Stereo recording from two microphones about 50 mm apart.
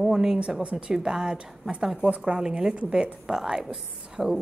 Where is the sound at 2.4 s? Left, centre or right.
Centre.